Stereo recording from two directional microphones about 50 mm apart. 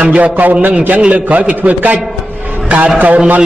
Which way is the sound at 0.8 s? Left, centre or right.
Right.